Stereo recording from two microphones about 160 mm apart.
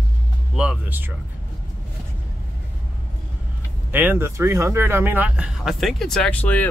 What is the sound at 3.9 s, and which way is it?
Speech, 10° right (ahead or behind).